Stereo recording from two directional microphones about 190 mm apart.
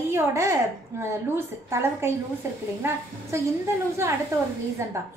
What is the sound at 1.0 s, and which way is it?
A woman's voice, 15° right (ahead or behind).